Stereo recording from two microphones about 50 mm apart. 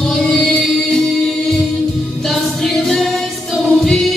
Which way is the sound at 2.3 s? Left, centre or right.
Centre.